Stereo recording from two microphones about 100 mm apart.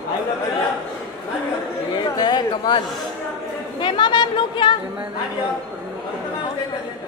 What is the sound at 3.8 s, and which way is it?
A woman's voice, 50° left (ahead or behind).